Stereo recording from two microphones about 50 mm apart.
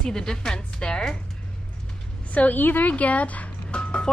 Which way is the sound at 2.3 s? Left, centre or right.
Left.